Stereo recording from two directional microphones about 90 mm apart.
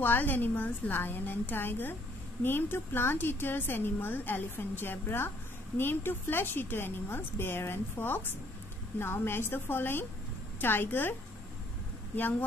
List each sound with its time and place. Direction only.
0.0 s a woman's voice: 20° left (ahead or behind)
12.2 s a woman's voice: 20° left (ahead or behind)